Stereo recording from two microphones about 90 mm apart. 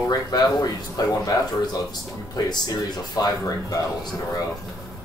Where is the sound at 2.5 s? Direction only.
50° left (ahead or behind).